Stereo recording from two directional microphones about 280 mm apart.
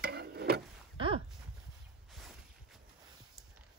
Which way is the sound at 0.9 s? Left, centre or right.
Centre.